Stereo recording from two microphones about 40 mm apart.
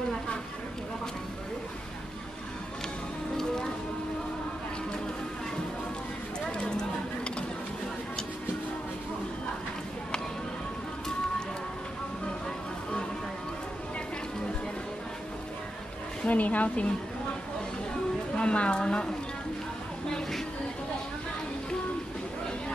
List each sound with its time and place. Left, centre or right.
3.3 s music: centre
6.5 s clip-clop: left
16.3 s a woman's voice: left
18.3 s a sound: left